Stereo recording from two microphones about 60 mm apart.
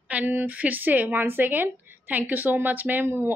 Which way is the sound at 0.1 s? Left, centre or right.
Right.